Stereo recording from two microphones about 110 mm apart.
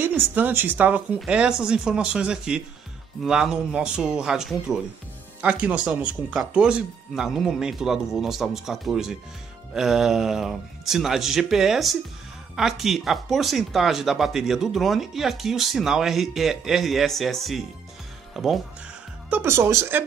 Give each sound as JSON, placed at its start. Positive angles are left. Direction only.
{"t": 0.0, "sound": "speech", "side_deg": -15}
{"t": 19.3, "sound": "speech", "side_deg": -20}